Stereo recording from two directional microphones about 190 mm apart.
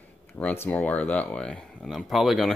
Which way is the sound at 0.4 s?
10° left (ahead or behind).